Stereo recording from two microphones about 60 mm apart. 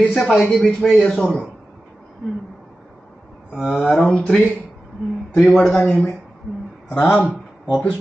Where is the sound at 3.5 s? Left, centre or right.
Centre.